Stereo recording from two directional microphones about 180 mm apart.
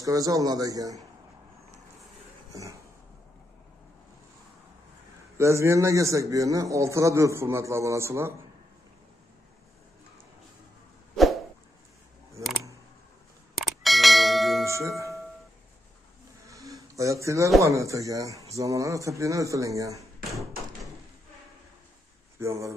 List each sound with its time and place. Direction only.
0.0 s a man's voice: 20° right (ahead or behind)
5.4 s a man's voice: 15° right (ahead or behind)
13.6 s a sound: centre (ahead or behind)
14.7 s tubular bells: 15° right (ahead or behind)
16.4 s a sound: 20° right (ahead or behind)
17.7 s a man's voice: 20° right (ahead or behind)
20.2 s bouncing: centre (ahead or behind)
22.4 s a man's voice: 15° right (ahead or behind)